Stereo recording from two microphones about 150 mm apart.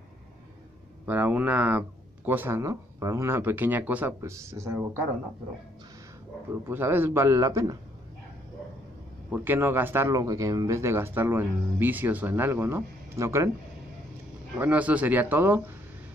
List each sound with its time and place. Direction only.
1.0 s speech: 10° right (ahead or behind)
6.5 s speech: 15° right (ahead or behind)
9.3 s speech: 15° right (ahead or behind)
14.6 s speech: 10° right (ahead or behind)